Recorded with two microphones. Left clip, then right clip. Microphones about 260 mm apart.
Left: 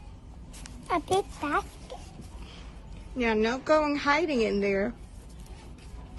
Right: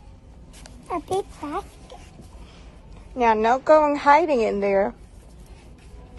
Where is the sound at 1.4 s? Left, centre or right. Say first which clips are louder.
Left 2 dB; left.